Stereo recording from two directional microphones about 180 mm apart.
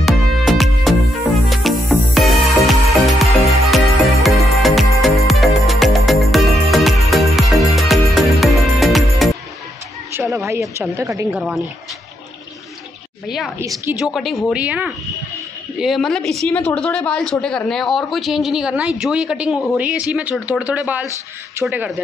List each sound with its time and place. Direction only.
0.0 s music: centre (ahead or behind)
10.1 s a sound: 15° right (ahead or behind)
10.7 s a woman's voice: 15° right (ahead or behind)
13.9 s a woman's voice: centre (ahead or behind)